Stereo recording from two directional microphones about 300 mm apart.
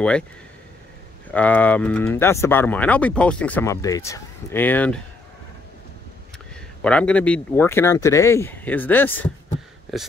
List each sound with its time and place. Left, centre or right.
1.3 s speech: centre
6.8 s speech: centre